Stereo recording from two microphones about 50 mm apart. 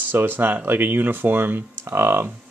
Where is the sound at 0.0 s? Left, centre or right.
Right.